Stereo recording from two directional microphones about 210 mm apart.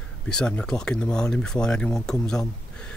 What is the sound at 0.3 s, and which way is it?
Speech, 5° left (ahead or behind).